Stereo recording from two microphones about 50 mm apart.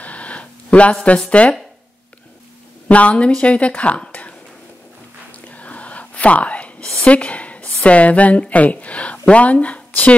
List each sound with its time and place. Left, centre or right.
0.0 s a sound: left
1.3 s speech: left
2.9 s speech: left
4.1 s a sound: left
5.5 s whispering: left
7.0 s a woman's voice: left